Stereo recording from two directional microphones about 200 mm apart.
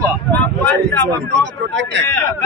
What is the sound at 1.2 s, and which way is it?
Speech, 60° right (ahead or behind).